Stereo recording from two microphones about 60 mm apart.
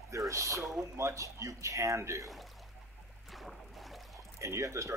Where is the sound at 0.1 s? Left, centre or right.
Right.